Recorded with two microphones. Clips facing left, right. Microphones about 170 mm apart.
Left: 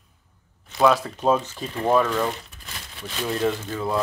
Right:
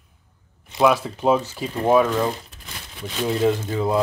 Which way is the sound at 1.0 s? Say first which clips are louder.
Right 2 dB; 10° right (ahead or behind).